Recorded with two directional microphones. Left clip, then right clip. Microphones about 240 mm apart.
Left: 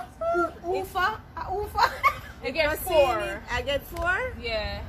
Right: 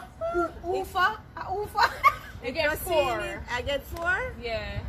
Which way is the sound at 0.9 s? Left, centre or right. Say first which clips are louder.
Right 4 dB; centre.